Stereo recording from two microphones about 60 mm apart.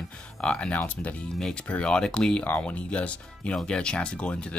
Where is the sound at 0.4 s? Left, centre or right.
Centre.